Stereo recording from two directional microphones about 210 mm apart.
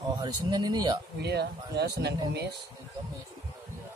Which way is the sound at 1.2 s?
50° right (ahead or behind).